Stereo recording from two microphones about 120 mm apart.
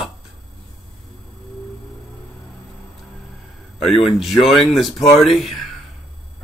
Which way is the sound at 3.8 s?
Centre (ahead or behind).